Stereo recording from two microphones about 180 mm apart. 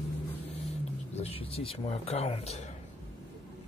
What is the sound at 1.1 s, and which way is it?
Speech, 35° left (ahead or behind).